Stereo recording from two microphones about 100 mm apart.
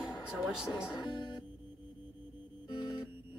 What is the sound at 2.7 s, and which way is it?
Music, 50° left (ahead or behind).